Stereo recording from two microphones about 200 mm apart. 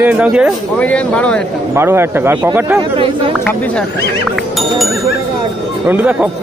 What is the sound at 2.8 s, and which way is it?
Speech, 25° right (ahead or behind).